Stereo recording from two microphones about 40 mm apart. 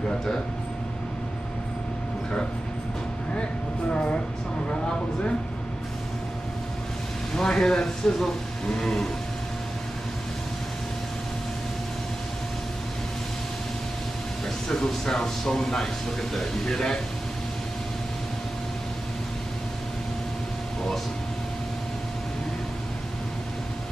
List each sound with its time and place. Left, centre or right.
3.9 s a woman's voice: left
4.6 s a sound: left
7.3 s speech: centre
14.7 s speech: centre